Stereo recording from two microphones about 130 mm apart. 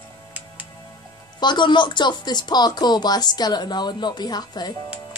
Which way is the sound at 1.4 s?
35° left (ahead or behind).